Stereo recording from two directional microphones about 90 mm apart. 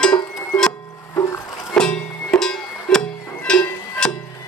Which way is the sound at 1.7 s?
10° left (ahead or behind).